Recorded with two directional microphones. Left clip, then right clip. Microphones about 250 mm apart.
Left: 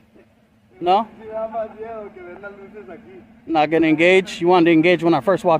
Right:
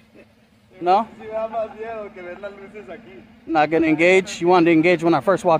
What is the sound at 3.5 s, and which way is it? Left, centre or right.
Speech, centre.